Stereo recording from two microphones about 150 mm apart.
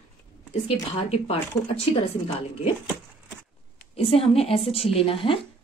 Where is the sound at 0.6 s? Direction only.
40° left (ahead or behind).